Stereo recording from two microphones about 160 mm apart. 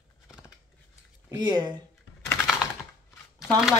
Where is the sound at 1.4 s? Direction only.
25° right (ahead or behind).